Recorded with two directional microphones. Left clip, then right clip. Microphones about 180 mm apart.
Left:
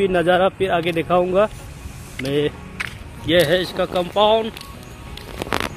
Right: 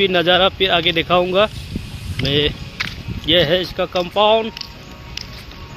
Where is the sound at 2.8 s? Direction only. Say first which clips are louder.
Right 3 dB; 20° left (ahead or behind).